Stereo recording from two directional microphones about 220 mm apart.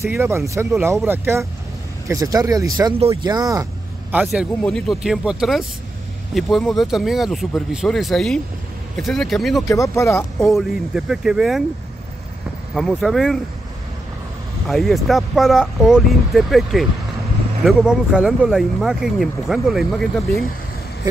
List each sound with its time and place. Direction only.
0.0 s speech: 10° right (ahead or behind)
4.1 s speech: 5° right (ahead or behind)
9.7 s speech: 15° left (ahead or behind)
10.4 s speech: centre (ahead or behind)
12.7 s speech: centre (ahead or behind)
14.7 s speech: centre (ahead or behind)